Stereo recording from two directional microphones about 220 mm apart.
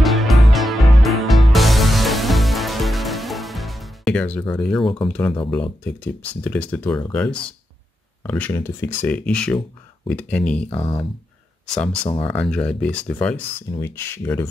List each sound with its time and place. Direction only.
0.0 s music: centre (ahead or behind)
5.5 s speech: 5° left (ahead or behind)
10.8 s speech: 15° left (ahead or behind)
11.7 s speech: 5° left (ahead or behind)